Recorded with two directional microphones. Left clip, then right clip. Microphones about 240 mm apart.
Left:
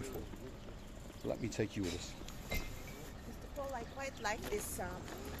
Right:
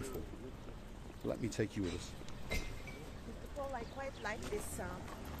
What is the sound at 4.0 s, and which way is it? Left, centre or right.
Vehicle, left.